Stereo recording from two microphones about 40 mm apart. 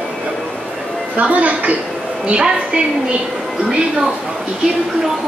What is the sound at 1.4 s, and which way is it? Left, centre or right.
Speech, right.